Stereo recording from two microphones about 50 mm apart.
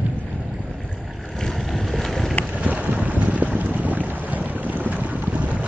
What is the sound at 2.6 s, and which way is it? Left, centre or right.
Boat, right.